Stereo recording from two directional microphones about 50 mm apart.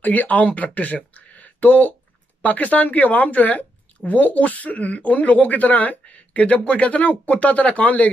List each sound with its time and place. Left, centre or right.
0.0 s speech: left